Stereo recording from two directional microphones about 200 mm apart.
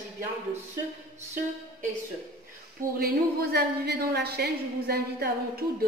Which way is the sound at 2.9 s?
50° right (ahead or behind).